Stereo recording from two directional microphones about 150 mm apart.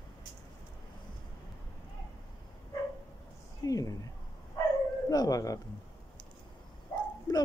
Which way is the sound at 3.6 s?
25° left (ahead or behind).